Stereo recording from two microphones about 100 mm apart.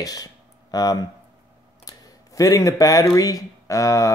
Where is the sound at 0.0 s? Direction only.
40° left (ahead or behind).